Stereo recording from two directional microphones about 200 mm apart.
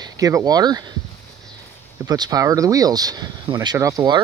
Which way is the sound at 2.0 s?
20° right (ahead or behind).